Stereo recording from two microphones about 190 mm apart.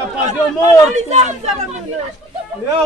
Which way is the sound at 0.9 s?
35° right (ahead or behind).